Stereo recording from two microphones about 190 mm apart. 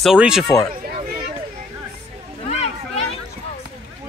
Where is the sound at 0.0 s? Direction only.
5° right (ahead or behind).